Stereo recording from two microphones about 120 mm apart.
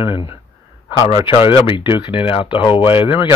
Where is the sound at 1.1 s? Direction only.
25° right (ahead or behind).